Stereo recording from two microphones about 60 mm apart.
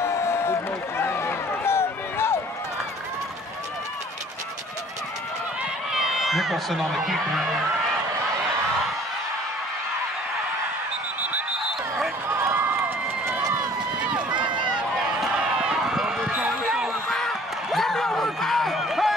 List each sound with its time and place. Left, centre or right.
0.0 s run: left
5.9 s speech: centre
12.3 s run: right
14.0 s run: right
16.3 s basketball bounce: centre
17.1 s a sound: centre